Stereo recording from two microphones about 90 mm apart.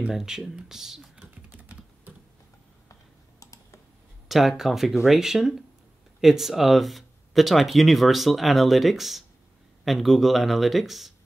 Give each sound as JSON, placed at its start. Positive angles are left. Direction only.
{"t": 0.0, "sound": "speech", "side_deg": -5}
{"t": 1.2, "sound": "typing", "side_deg": -20}
{"t": 2.9, "sound": "computer keyboard", "side_deg": 35}
{"t": 4.3, "sound": "speech", "side_deg": 0}